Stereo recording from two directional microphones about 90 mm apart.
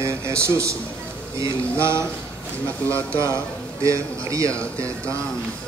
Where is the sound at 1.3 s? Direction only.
35° right (ahead or behind).